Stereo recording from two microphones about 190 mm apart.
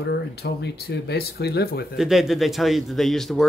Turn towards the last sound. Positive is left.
turn(degrees=0)  # may be behind; listen again after turning